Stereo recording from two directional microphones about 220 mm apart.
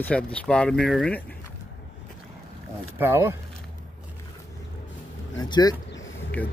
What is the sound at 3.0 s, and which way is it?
Speech, 10° right (ahead or behind).